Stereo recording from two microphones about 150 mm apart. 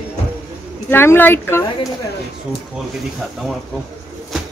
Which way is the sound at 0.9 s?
15° left (ahead or behind).